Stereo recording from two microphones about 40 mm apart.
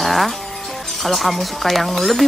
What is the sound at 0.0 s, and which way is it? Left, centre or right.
Speech, centre.